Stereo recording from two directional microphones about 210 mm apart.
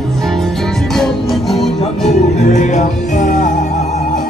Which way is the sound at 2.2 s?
35° left (ahead or behind).